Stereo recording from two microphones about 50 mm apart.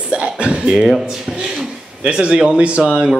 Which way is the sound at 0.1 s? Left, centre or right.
Right.